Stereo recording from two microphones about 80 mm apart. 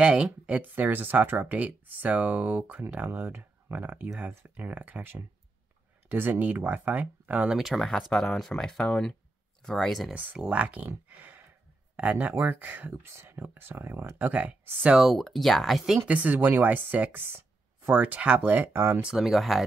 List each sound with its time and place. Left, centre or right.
0.0 s speech: centre
7.5 s speech: centre
10.1 s speech: right
11.1 s a sound: right
12.0 s speech: centre
15.0 s speech: centre
16.3 s speech: right
18.9 s speech: centre